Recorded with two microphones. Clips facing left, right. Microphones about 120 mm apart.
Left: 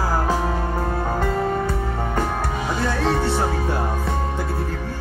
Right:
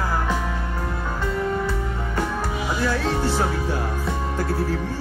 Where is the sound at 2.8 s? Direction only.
65° left (ahead or behind).